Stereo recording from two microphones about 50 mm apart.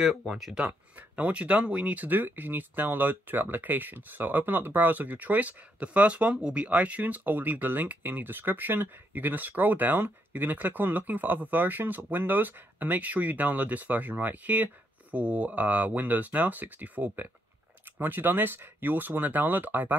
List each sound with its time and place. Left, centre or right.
0.3 s speech: centre
0.6 s speech: right